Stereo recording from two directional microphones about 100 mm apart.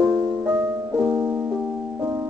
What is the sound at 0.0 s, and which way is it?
Music, 15° right (ahead or behind).